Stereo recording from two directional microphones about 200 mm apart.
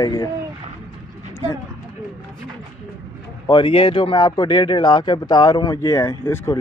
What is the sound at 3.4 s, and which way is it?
Speech, 25° left (ahead or behind).